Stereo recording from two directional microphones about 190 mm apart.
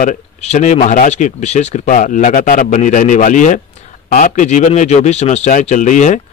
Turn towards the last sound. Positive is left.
turn(degrees=40)  # may be behind; listen again after turning